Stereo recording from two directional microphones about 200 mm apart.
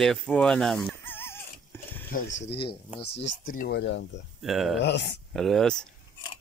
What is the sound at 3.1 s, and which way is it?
Speech, 40° left (ahead or behind).